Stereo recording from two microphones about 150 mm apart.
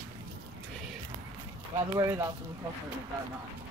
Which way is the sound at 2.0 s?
20° right (ahead or behind).